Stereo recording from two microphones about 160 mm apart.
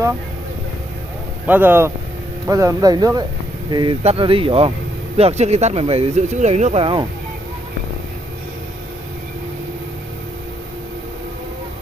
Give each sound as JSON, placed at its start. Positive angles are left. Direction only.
{"t": 1.4, "sound": "speech", "side_deg": -10}
{"t": 4.0, "sound": "speech", "side_deg": -35}